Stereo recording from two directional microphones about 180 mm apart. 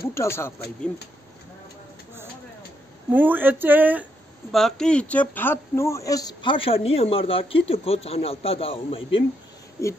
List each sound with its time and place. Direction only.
0.1 s speech: 15° left (ahead or behind)
3.1 s speech: 10° right (ahead or behind)
4.5 s speech: centre (ahead or behind); by 9.2 s 30° left (ahead or behind)